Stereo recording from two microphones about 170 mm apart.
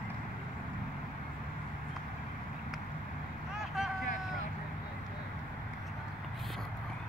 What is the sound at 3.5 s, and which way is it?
Vehicle, centre (ahead or behind).